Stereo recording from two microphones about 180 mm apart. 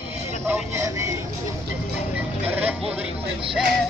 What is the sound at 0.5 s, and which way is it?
Speech, 15° right (ahead or behind).